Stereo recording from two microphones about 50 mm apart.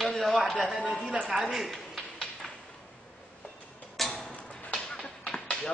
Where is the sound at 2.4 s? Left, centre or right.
Centre.